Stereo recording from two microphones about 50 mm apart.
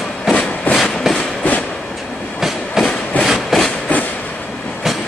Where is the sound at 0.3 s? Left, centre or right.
Left.